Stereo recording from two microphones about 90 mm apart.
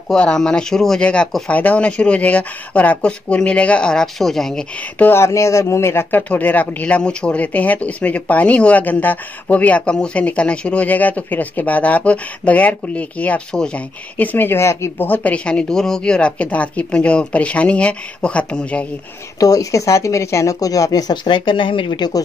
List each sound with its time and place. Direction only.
0.1 s speech: 10° left (ahead or behind)
4.9 s speech: 25° left (ahead or behind)
15.0 s speech: 20° left (ahead or behind)
19.4 s speech: 40° left (ahead or behind)